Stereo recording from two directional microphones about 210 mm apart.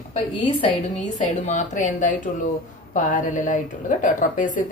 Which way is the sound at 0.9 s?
35° left (ahead or behind).